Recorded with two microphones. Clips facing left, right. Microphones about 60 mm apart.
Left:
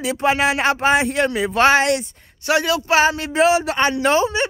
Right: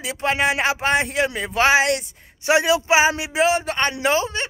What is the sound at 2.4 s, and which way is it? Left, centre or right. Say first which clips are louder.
Speech: right 1 dB; centre.